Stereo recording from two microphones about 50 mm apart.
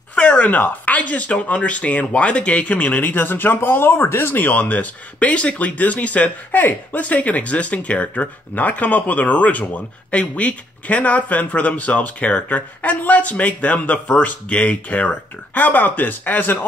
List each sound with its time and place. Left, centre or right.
0.1 s speech: left